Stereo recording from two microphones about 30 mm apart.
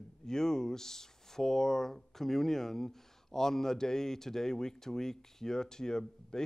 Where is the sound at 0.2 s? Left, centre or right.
Centre.